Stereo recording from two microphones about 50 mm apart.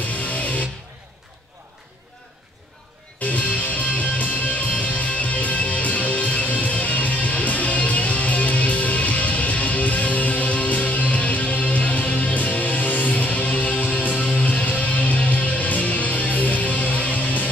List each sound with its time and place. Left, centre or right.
0.1 s music: left
3.3 s music: left